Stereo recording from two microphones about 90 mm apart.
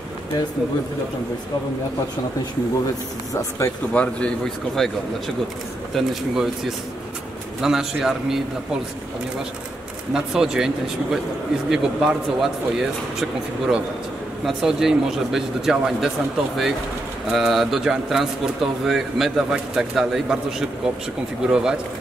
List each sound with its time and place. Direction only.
3.3 s speech: 30° left (ahead or behind)
3.9 s a man's voice: 15° left (ahead or behind)
5.9 s a man's voice: 5° right (ahead or behind)
10.1 s a man's voice: 5° right (ahead or behind)
17.3 s a man's voice: 5° right (ahead or behind)